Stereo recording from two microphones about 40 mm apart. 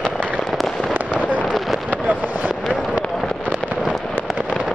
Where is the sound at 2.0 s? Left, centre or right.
Right.